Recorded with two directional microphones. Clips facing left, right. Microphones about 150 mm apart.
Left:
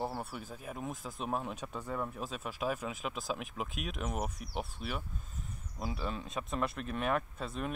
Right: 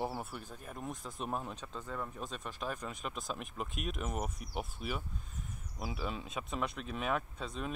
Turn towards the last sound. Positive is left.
turn(degrees=0)  # may be behind; listen again after turning